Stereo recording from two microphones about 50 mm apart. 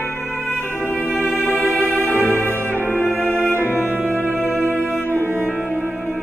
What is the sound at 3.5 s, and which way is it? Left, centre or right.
Music, right.